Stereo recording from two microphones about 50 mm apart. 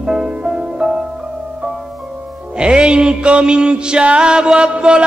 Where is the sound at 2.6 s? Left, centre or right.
Centre.